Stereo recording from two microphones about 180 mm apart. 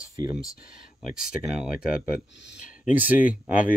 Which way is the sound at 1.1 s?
5° right (ahead or behind).